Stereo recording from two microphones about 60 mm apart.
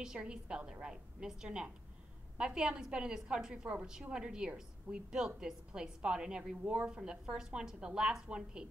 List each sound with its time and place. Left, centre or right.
0.0 s a woman's voice: centre